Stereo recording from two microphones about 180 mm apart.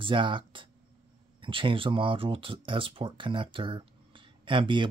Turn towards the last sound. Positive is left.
turn(degrees=-25)  # may be behind; listen again after turning